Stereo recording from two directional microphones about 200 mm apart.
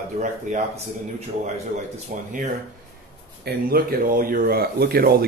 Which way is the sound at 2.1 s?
40° right (ahead or behind).